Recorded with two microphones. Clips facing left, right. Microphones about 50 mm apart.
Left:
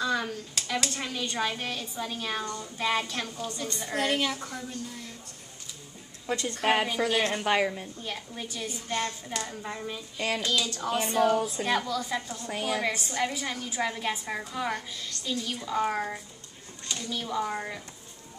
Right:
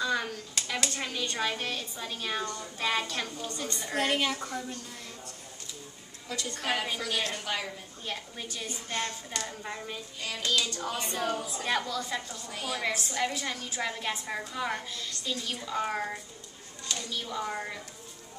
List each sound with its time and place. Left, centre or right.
0.0 s clapping: centre
0.6 s a woman's voice: centre
6.2 s a woman's voice: left
8.0 s a woman's voice: centre
10.9 s a woman's voice: centre